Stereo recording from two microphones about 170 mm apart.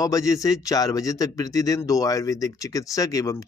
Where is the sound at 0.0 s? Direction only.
20° left (ahead or behind).